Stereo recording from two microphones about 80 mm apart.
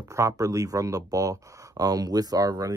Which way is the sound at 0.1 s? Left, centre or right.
Right.